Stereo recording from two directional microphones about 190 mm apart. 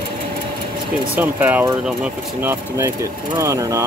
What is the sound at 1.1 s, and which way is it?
Speech, 10° right (ahead or behind).